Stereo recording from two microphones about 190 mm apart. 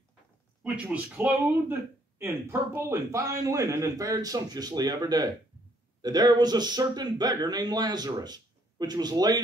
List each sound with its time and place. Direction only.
0.7 s speech: 5° right (ahead or behind)